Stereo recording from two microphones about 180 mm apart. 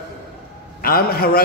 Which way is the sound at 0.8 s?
55° left (ahead or behind).